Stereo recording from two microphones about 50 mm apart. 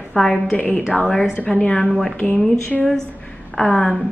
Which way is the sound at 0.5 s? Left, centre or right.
Left.